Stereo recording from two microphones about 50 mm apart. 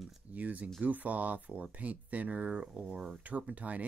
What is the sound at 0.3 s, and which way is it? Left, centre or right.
Speech, right.